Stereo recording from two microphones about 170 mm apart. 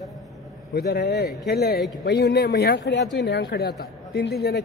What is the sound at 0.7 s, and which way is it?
Speech, 70° left (ahead or behind).